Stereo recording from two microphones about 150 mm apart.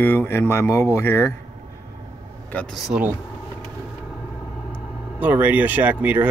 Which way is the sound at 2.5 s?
5° left (ahead or behind).